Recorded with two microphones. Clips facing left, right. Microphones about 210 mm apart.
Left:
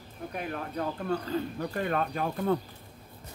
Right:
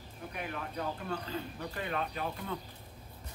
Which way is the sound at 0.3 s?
45° left (ahead or behind).